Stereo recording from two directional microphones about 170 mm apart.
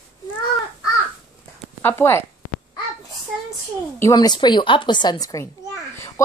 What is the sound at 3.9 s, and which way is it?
A woman's voice, 20° left (ahead or behind).